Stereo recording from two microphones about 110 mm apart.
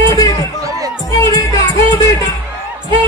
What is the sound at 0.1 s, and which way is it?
Chatter, 35° left (ahead or behind).